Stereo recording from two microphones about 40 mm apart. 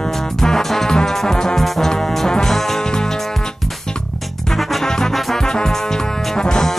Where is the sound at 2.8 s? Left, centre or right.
Centre.